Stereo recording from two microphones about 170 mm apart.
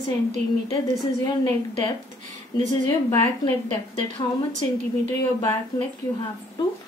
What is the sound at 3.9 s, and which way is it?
Speech, 45° right (ahead or behind).